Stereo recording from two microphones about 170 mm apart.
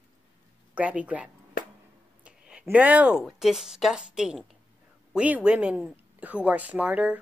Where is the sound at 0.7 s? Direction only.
10° right (ahead or behind).